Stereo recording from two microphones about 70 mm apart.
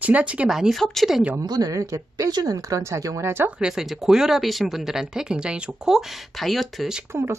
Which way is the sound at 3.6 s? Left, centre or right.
Centre.